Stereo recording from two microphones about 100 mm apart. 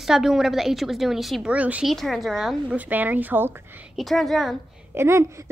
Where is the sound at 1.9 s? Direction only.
Centre (ahead or behind).